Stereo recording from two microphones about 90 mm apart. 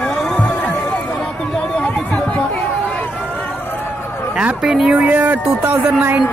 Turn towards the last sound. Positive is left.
turn(degrees=-25)  # may be behind; listen again after turning